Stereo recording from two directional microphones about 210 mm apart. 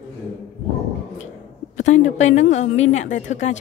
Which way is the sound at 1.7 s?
35° left (ahead or behind).